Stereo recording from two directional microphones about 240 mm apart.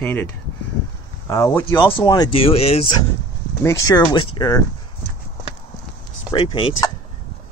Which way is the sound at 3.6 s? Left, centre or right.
Centre.